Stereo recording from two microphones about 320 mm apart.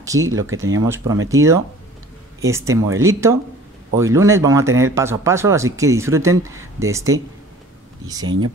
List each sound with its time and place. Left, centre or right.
0.0 s speech: centre